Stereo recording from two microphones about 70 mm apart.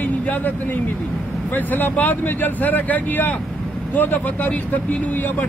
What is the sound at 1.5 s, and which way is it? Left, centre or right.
Speech, left.